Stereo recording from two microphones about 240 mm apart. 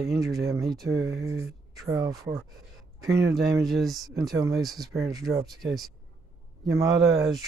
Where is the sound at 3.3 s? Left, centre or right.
Centre.